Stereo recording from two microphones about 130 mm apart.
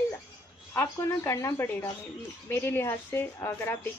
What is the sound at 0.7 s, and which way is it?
A woman's voice, 20° left (ahead or behind).